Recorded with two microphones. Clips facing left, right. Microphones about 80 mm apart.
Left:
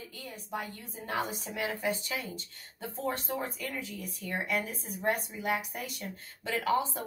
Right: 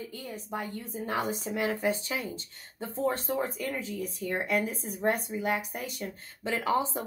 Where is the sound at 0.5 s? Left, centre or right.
Right.